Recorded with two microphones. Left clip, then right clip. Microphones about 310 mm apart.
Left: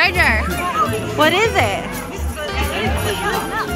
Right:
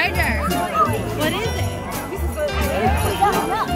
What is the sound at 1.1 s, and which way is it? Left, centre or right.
Speech, centre.